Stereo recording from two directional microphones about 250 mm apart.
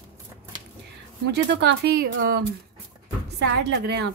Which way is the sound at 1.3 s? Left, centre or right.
Right.